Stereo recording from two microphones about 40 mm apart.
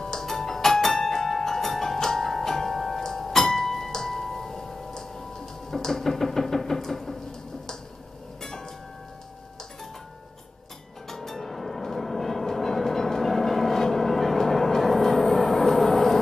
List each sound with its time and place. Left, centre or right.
0.0 s music: centre
5.7 s a sound: centre
8.4 s vehicle: centre
11.1 s train: centre